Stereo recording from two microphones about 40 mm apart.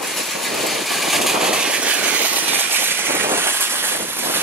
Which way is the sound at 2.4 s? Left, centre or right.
Right.